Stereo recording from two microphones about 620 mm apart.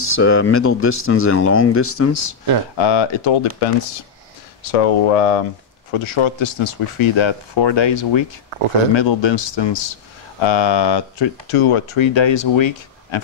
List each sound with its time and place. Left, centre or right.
0.1 s speech: left
2.8 s speech: left
5.9 s speech: left